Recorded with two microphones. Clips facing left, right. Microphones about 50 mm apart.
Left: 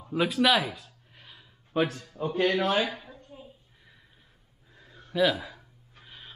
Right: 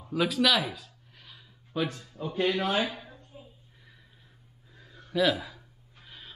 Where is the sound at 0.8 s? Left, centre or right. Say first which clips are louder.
Left 1 dB; centre.